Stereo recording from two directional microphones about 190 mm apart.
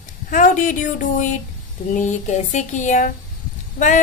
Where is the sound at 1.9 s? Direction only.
40° left (ahead or behind).